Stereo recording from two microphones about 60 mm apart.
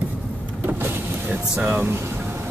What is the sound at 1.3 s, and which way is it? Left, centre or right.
Speech, right.